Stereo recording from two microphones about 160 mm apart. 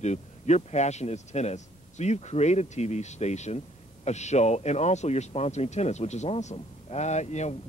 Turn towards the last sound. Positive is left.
turn(degrees=45)  # may be behind; listen again after turning